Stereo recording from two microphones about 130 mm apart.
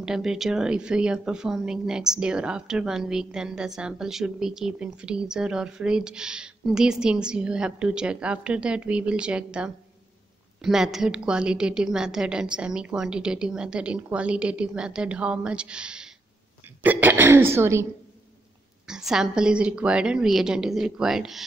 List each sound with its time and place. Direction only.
0.0 s a woman's voice: 5° right (ahead or behind); by 17.8 s 20° right (ahead or behind)
18.9 s a woman's voice: 5° right (ahead or behind)